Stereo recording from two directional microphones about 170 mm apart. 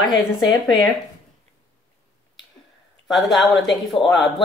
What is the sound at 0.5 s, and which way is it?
Speech, 25° left (ahead or behind).